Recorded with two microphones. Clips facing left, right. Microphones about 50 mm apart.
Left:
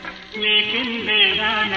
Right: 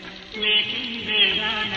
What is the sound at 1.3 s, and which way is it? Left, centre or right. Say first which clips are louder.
Speech: left 5 dB; left.